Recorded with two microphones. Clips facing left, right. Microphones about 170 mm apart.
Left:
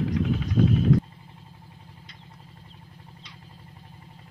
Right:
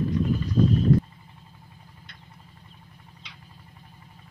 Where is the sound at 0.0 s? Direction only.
90° left.